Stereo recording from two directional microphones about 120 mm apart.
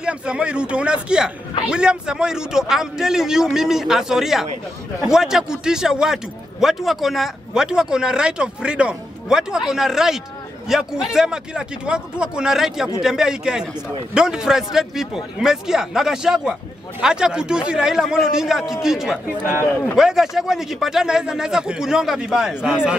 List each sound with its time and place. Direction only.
0.0 s speech: 10° right (ahead or behind)
19.6 s speech: 15° left (ahead or behind)
20.0 s speech: 5° right (ahead or behind)